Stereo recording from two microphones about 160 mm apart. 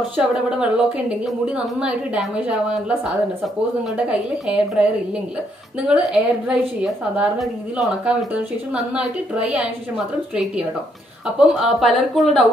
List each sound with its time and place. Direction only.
0.2 s a woman's voice: 5° right (ahead or behind)
4.1 s a woman's voice: 5° right (ahead or behind)
5.9 s a woman's voice: 5° right (ahead or behind)